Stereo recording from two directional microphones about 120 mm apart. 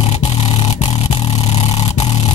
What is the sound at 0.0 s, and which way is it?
Vehicle, 65° left (ahead or behind).